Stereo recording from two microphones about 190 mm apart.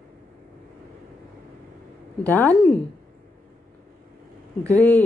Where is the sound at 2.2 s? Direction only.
10° left (ahead or behind).